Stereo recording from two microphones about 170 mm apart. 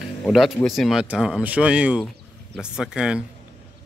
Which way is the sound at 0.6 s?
Centre (ahead or behind).